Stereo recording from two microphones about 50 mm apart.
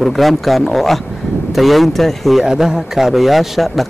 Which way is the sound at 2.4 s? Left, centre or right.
Centre.